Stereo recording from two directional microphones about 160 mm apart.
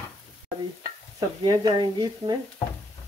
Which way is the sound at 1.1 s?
25° right (ahead or behind).